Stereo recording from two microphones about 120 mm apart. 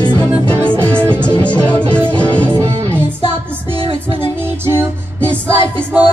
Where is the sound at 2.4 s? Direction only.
25° right (ahead or behind).